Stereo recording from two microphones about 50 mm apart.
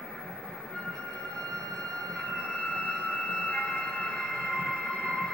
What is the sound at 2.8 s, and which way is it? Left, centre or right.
Train, centre.